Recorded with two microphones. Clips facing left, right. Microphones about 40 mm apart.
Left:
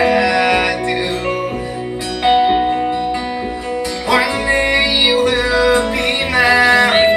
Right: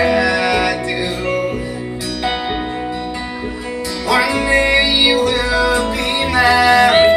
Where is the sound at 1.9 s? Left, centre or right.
Left.